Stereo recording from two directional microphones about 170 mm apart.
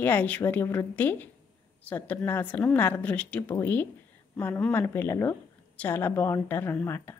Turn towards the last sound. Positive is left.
turn(degrees=10)  # may be behind; listen again after turning